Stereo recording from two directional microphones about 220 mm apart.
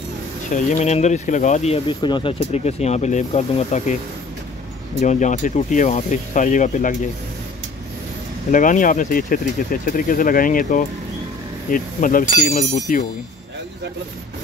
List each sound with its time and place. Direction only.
0.5 s speech: 30° left (ahead or behind)
5.0 s speech: 35° left (ahead or behind)
8.5 s speech: 35° left (ahead or behind)